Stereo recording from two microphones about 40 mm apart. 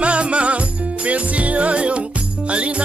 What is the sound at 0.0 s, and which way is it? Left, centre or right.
Music, right.